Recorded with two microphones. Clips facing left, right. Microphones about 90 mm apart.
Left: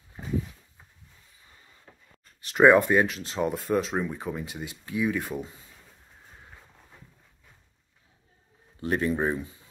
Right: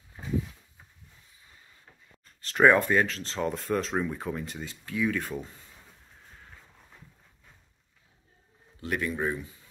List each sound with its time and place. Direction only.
2.4 s speech: 15° left (ahead or behind)
4.6 s speech: 15° left (ahead or behind)
8.8 s speech: 30° left (ahead or behind)